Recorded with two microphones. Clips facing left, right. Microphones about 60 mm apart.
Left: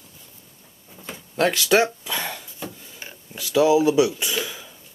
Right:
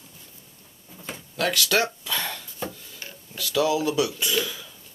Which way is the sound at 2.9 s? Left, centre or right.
Centre.